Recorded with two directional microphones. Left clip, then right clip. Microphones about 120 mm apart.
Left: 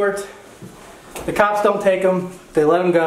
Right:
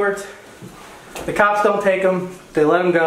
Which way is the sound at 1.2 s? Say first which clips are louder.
Right 1 dB; 15° left (ahead or behind).